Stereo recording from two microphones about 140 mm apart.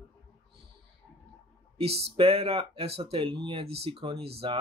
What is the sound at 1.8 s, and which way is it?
Speech, 45° right (ahead or behind).